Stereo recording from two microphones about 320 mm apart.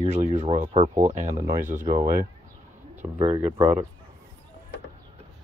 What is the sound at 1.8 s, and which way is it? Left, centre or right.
Speech, right.